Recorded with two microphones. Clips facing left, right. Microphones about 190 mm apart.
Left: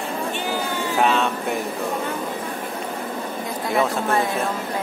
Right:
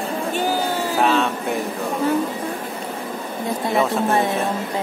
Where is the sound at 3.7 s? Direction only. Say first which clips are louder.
Right 1 dB; centre (ahead or behind).